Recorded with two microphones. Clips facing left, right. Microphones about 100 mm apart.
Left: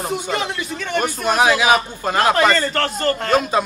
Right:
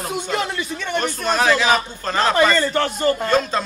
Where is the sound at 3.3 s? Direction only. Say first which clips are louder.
Left 2 dB; 10° left (ahead or behind).